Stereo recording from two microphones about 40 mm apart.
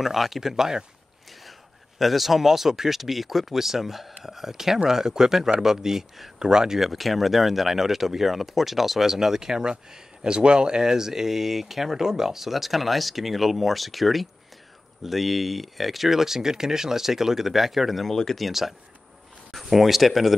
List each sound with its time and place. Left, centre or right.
0.0 s speech: centre
2.0 s speech: centre
6.4 s speech: centre
6.8 s speech: centre
18.5 s speech: centre